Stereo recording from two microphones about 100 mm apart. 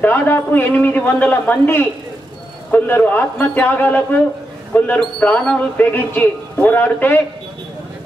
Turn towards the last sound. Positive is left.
turn(degrees=20)  # may be behind; listen again after turning